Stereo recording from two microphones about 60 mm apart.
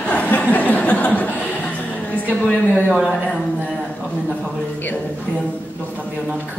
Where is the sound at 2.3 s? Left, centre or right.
Centre.